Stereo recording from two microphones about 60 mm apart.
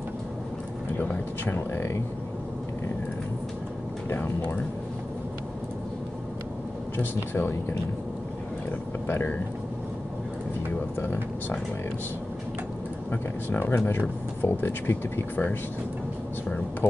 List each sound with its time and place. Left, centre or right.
0.9 s speech: left
7.0 s speech: left
9.0 s speech: left
11.0 s speech: left
13.1 s speech: left